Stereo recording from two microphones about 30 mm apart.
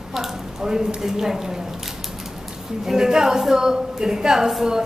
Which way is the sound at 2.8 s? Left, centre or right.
Centre.